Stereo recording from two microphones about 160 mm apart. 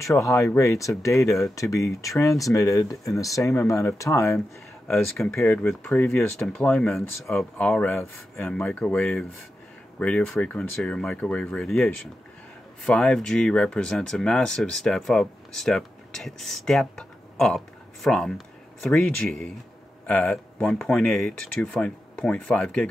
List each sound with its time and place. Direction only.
0.0 s speech: 20° left (ahead or behind)
4.8 s speech: 5° left (ahead or behind)